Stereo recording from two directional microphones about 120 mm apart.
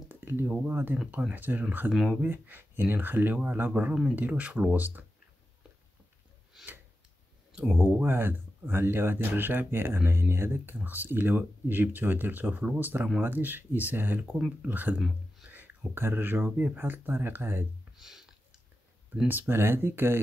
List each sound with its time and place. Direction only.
0.1 s a sound: 20° right (ahead or behind)
0.5 s speech: 15° right (ahead or behind)
1.9 s speech: centre (ahead or behind)
2.2 s speech: 15° right (ahead or behind)
6.5 s tick-tock: 10° right (ahead or behind)
7.8 s speech: 15° right (ahead or behind)
15.0 s speech: centre (ahead or behind)
15.4 s speech: 15° right (ahead or behind)
17.9 s a sound: 5° right (ahead or behind)
19.1 s speech: 15° right (ahead or behind)